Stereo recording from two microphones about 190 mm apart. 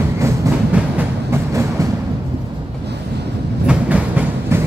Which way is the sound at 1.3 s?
15° right (ahead or behind).